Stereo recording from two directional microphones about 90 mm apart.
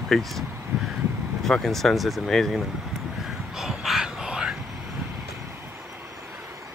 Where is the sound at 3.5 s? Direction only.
5° right (ahead or behind).